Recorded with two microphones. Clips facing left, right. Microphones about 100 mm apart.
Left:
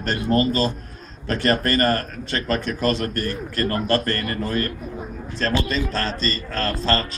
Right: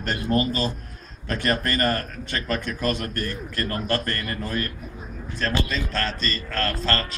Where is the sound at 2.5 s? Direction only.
20° left (ahead or behind).